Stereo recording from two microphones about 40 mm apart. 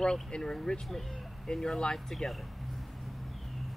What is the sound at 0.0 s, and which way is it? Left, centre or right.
Speech, centre.